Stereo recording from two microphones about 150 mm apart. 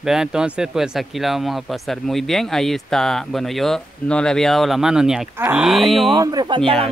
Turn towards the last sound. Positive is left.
turn(degrees=-30)  # may be behind; listen again after turning